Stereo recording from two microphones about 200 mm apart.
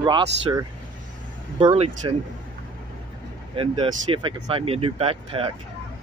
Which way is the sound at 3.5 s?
25° right (ahead or behind).